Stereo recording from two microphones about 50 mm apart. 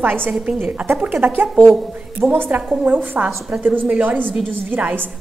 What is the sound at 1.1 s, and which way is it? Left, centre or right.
Speech, right.